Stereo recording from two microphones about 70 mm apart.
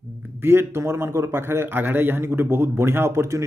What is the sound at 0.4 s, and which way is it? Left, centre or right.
Speech, right.